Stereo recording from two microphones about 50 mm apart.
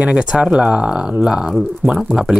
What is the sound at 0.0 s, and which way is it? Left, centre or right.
Speech, right.